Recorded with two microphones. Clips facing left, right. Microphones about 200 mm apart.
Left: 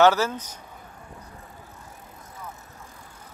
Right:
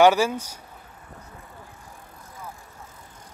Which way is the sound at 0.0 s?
15° right (ahead or behind).